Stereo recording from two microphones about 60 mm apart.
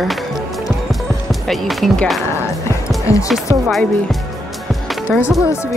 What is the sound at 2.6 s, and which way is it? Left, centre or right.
Music, left.